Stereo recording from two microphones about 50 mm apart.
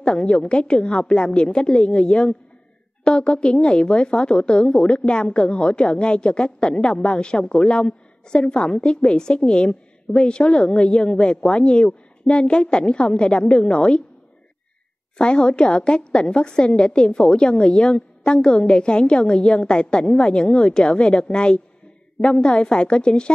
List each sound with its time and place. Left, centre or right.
0.0 s a woman's voice: centre
15.1 s a woman's voice: centre